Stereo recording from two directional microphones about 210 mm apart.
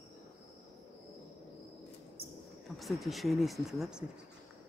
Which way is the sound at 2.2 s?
45° right (ahead or behind).